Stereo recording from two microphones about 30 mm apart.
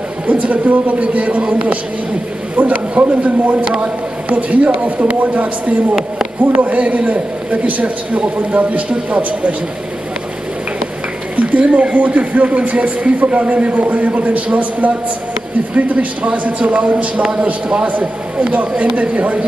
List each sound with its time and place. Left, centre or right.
0.3 s a man's voice: right
11.3 s a sound: right
11.7 s speech: right
16.4 s a man's voice: right